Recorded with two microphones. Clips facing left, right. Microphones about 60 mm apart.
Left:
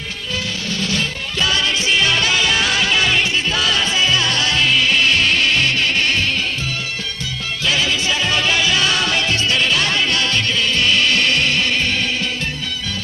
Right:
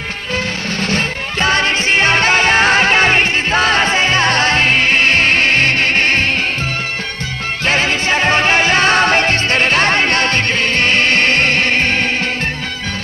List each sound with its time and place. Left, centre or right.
0.8 s music: right
7.6 s music: right